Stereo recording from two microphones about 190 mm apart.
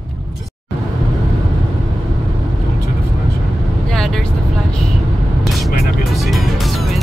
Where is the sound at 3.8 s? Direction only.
Centre (ahead or behind).